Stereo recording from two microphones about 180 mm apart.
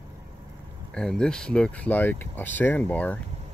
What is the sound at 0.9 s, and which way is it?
Speech, 5° left (ahead or behind).